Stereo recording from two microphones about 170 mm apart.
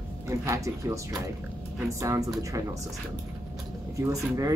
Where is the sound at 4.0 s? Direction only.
20° right (ahead or behind).